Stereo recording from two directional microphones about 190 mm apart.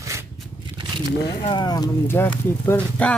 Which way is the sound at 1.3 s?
25° left (ahead or behind).